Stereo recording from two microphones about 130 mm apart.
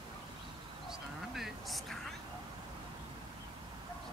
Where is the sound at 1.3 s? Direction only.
Centre (ahead or behind).